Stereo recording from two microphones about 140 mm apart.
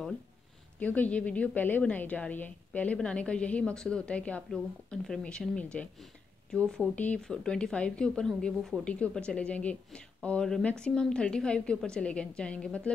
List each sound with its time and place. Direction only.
0.7 s a woman's voice: 10° left (ahead or behind)